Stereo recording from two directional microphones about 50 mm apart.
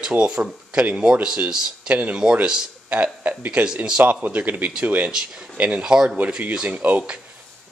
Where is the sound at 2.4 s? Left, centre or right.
Centre.